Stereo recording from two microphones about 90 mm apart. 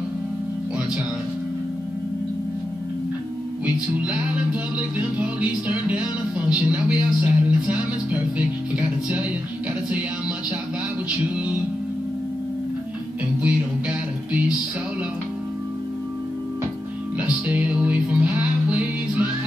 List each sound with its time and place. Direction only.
3.6 s music: 15° right (ahead or behind)
11.1 s music: 15° right (ahead or behind)
13.4 s music: 15° right (ahead or behind)
17.3 s music: 15° right (ahead or behind)